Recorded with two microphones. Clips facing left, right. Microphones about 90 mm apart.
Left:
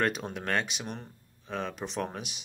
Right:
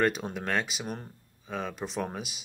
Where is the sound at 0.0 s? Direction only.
Centre (ahead or behind).